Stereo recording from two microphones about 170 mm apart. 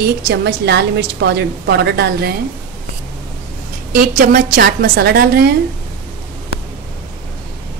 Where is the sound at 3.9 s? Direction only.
55° right (ahead or behind).